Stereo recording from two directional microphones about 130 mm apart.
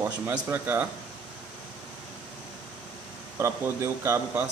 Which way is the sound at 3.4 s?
20° right (ahead or behind).